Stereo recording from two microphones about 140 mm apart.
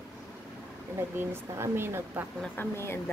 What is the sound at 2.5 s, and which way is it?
Speech, 15° left (ahead or behind).